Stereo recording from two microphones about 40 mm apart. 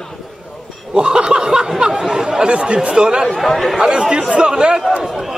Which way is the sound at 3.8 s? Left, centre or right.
Centre.